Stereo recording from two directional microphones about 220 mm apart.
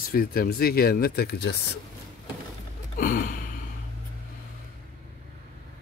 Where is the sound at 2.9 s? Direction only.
40° left (ahead or behind).